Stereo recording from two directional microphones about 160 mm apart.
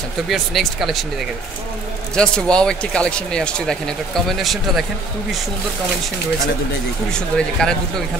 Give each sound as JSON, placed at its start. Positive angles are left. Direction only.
{"t": 0.3, "sound": "speech", "side_deg": 0}
{"t": 2.1, "sound": "speech", "side_deg": 5}
{"t": 7.1, "sound": "speech", "side_deg": 5}